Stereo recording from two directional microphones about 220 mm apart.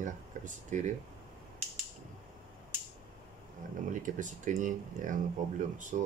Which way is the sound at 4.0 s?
35° right (ahead or behind).